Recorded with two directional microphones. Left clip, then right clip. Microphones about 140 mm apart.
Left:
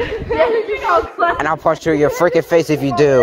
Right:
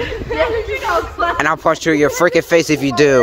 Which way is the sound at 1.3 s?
60° right (ahead or behind).